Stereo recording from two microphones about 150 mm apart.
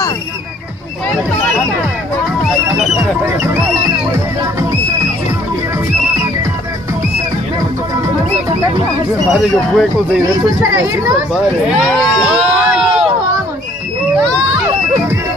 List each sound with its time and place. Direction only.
9.3 s speech: centre (ahead or behind)
10.3 s speech: 20° right (ahead or behind)
11.8 s crowd: centre (ahead or behind)